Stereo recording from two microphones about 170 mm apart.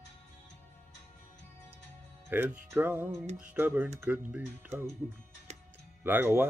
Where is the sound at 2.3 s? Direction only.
10° right (ahead or behind).